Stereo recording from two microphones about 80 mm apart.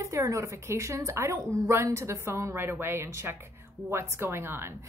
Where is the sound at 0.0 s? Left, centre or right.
Right.